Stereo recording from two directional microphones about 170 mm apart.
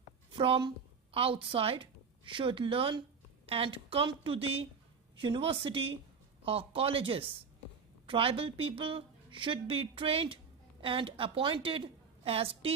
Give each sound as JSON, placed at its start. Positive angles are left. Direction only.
{"t": 0.4, "sound": "a woman's voice", "side_deg": -30}